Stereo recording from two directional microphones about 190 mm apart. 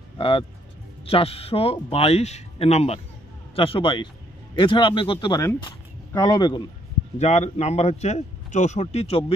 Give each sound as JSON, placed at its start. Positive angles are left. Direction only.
{"t": 0.2, "sound": "speech", "side_deg": 30}
{"t": 7.2, "sound": "speech", "side_deg": 35}